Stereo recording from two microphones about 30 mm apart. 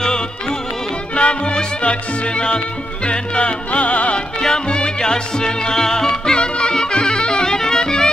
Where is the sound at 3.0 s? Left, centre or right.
Left.